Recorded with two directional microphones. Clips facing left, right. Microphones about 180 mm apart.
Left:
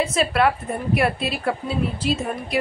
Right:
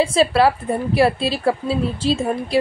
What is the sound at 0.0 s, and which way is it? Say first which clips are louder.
A woman's voice: right 4 dB; 30° right (ahead or behind).